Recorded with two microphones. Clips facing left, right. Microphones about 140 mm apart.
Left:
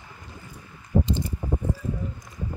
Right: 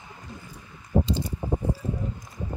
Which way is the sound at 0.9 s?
75° right (ahead or behind).